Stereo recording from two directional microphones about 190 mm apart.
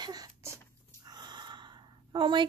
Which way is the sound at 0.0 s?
20° right (ahead or behind).